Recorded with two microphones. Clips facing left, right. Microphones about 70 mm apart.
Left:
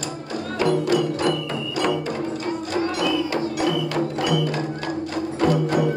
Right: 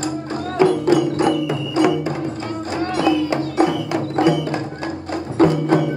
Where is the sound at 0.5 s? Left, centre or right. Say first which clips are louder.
Right 5 dB; right.